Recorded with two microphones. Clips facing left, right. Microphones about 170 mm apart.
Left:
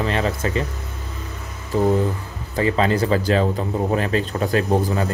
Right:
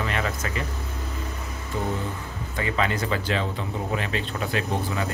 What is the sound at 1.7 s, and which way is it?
Speech, 35° left (ahead or behind).